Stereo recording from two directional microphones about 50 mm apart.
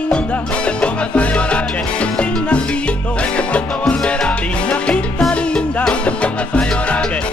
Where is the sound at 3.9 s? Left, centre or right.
Centre.